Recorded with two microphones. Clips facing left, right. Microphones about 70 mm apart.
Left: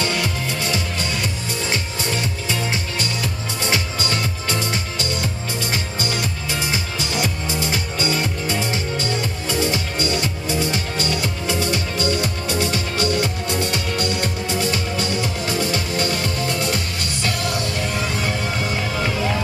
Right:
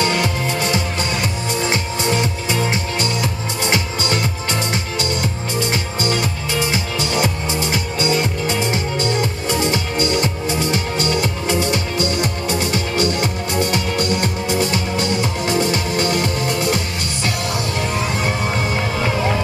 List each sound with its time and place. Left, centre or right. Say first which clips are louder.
0.0 s music: right 4 dB; right
5.6 s music: right 5 dB; right